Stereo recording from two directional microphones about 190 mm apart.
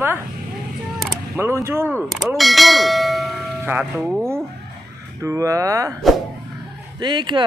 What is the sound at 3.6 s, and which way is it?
Speech, 5° right (ahead or behind).